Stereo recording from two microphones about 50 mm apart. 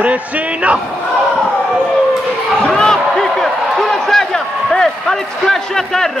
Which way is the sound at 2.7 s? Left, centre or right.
Centre.